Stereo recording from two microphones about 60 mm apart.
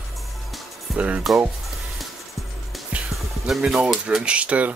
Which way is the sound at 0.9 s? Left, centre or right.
Right.